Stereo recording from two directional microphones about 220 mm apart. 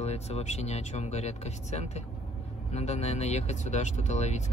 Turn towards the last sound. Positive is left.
turn(degrees=30)  # may be behind; listen again after turning